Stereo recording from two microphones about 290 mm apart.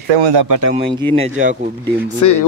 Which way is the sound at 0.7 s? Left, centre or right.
Centre.